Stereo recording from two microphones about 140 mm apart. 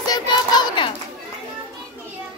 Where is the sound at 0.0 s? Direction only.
30° left (ahead or behind).